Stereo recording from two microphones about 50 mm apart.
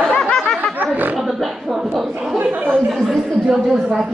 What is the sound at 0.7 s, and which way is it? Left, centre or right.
Roaring cats, right.